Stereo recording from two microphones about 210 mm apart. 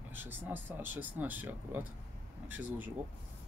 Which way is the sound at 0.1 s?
10° right (ahead or behind).